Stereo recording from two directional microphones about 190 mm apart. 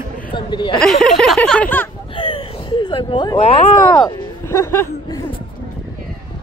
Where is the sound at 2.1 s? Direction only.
25° left (ahead or behind).